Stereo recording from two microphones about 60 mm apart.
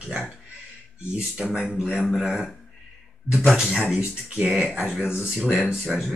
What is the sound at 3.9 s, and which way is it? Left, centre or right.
A man's voice, centre.